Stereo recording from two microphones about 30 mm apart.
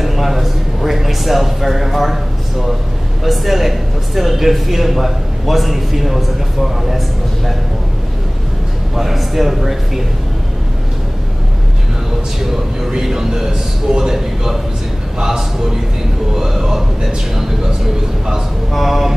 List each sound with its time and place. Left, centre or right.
0.0 s a sound: centre
3.3 s speech: centre
8.9 s a man's voice: centre
13.0 s a man's voice: centre
18.7 s speech: centre